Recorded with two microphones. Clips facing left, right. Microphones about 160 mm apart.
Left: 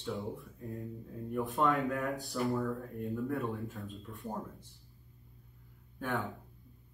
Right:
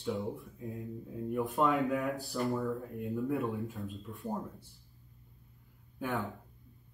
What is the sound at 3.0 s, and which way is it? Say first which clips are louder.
Speech: right 2 dB; 20° right (ahead or behind).